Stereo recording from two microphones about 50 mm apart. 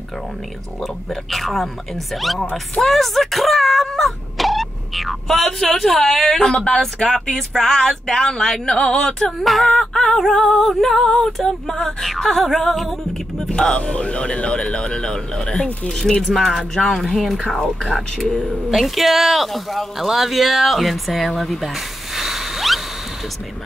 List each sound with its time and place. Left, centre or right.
1.3 s speech: centre
2.8 s speech: centre
9.4 s speech: centre
13.5 s speech: centre
18.7 s speech: centre
22.1 s a sound: centre